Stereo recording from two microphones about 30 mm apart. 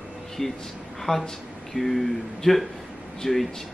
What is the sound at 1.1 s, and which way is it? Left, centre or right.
Speech, left.